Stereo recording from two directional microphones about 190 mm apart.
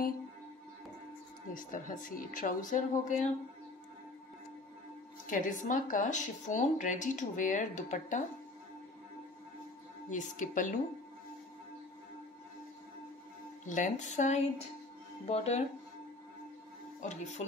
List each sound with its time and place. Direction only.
1.5 s speech: 45° left (ahead or behind)
5.2 s speech: 45° left (ahead or behind)
10.0 s speech: 40° left (ahead or behind)
13.7 s speech: 40° left (ahead or behind)
17.0 s speech: 40° left (ahead or behind)